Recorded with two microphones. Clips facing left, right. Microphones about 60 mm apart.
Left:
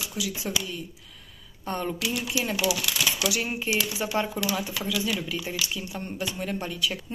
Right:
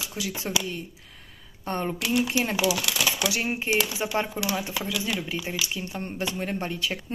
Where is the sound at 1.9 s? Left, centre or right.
Right.